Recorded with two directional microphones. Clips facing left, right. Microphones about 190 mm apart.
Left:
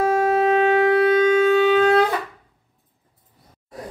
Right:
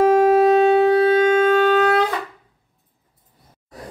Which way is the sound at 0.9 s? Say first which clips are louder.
Right 1 dB; 30° right (ahead or behind).